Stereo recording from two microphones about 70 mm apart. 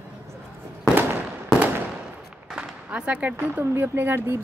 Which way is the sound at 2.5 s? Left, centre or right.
Centre.